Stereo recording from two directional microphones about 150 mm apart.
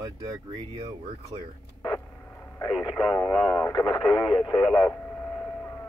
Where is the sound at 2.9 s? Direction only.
10° left (ahead or behind).